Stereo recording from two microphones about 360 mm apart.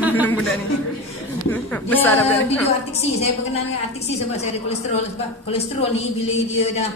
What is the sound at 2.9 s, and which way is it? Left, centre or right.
Speech, centre.